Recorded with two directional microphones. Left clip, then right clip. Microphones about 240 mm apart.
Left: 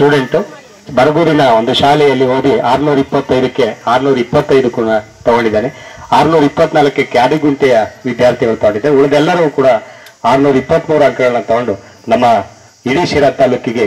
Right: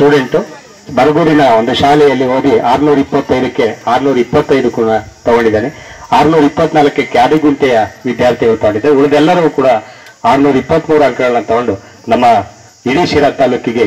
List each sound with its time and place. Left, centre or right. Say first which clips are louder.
0.0 s a man's voice: right 1 dB; left